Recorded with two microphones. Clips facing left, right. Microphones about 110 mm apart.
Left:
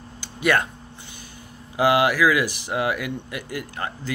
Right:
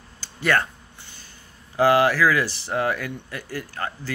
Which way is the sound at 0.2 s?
15° left (ahead or behind).